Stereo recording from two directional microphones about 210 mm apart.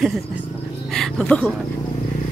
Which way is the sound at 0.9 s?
Centre (ahead or behind).